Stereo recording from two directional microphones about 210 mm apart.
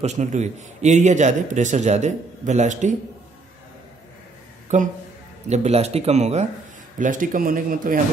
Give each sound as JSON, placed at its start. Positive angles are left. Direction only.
{"t": 0.0, "sound": "a man's voice", "side_deg": -35}
{"t": 5.5, "sound": "a man's voice", "side_deg": -30}